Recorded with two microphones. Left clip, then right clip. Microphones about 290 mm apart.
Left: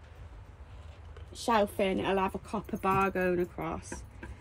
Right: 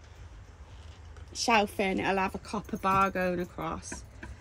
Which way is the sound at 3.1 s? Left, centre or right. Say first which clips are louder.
Left 1 dB; centre.